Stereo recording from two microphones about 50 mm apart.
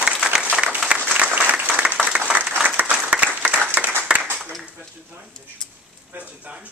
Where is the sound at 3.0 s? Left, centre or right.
Right.